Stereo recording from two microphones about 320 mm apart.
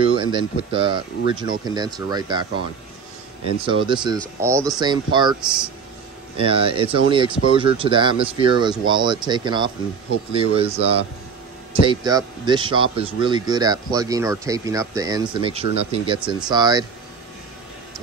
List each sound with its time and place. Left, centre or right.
0.0 s speech: centre
3.6 s speech: centre
11.8 s speech: centre